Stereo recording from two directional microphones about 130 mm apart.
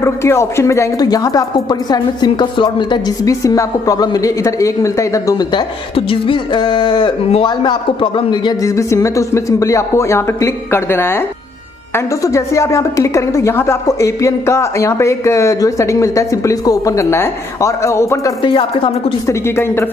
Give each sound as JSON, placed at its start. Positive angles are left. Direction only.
{"t": 0.0, "sound": "speech", "side_deg": 20}
{"t": 3.3, "sound": "speech", "side_deg": 25}
{"t": 5.9, "sound": "speech", "side_deg": 45}
{"t": 8.6, "sound": "speech", "side_deg": 25}
{"t": 18.4, "sound": "speech", "side_deg": 40}
{"t": 19.2, "sound": "speech", "side_deg": 20}